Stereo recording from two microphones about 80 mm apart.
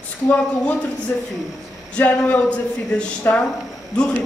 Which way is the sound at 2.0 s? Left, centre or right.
Centre.